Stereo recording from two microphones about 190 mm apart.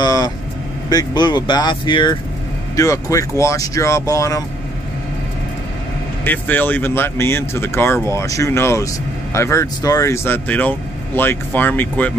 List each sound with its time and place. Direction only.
0.0 s speech: 20° left (ahead or behind)
6.2 s speech: 10° left (ahead or behind)